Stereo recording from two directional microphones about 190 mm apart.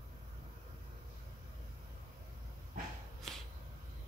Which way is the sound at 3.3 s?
Centre (ahead or behind).